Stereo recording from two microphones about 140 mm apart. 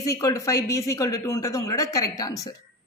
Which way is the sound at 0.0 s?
20° left (ahead or behind).